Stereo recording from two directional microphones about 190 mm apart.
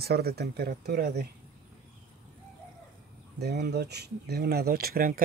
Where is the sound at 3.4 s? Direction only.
60° right (ahead or behind).